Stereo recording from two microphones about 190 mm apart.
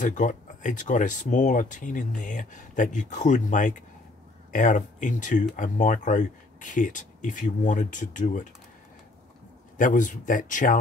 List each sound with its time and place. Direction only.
0.0 s speech: 40° left (ahead or behind)
9.8 s speech: 45° left (ahead or behind)